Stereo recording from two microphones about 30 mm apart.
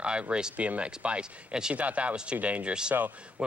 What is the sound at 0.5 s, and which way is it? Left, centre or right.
Speech, right.